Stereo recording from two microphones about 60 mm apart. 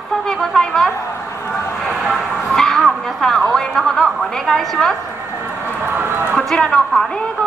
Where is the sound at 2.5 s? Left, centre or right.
Centre.